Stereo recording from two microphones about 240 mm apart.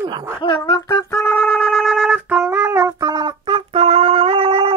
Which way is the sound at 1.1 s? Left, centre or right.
Centre.